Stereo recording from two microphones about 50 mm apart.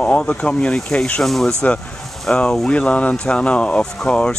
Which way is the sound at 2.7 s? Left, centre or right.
Left.